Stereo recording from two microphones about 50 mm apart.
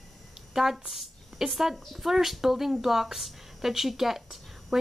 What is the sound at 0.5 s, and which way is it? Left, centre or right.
Speech, centre.